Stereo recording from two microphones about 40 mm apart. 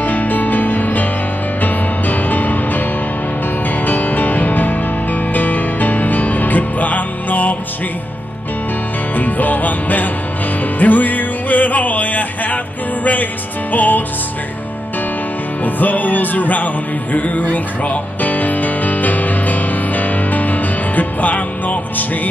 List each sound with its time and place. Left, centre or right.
0.0 s music: left
3.8 s music: left
9.1 s music: left
15.6 s music: left